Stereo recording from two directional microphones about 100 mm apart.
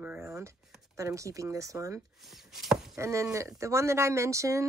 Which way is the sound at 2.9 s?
30° right (ahead or behind).